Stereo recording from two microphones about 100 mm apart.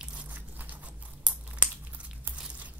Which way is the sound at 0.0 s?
15° right (ahead or behind).